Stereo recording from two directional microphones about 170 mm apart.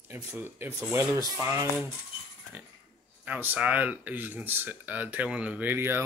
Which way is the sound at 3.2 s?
10° right (ahead or behind).